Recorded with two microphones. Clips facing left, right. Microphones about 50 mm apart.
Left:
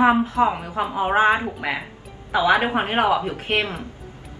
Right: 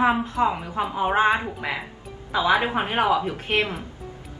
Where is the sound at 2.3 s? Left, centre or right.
Left.